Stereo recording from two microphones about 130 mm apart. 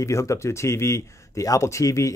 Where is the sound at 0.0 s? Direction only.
25° left (ahead or behind).